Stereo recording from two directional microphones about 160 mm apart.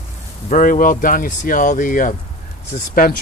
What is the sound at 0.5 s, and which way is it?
Speech, 55° left (ahead or behind).